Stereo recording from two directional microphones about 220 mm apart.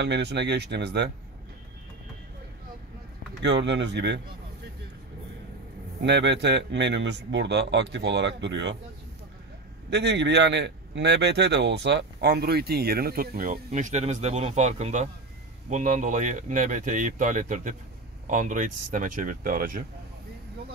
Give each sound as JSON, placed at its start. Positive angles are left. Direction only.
{"t": 0.0, "sound": "a man's voice", "side_deg": -50}
{"t": 3.4, "sound": "a man's voice", "side_deg": -50}
{"t": 6.0, "sound": "a man's voice", "side_deg": -50}
{"t": 9.8, "sound": "a man's voice", "side_deg": -50}